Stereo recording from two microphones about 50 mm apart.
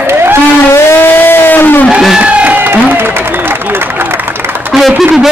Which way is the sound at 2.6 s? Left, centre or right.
Right.